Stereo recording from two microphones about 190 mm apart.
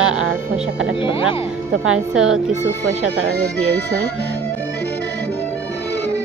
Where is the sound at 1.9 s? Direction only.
5° right (ahead or behind).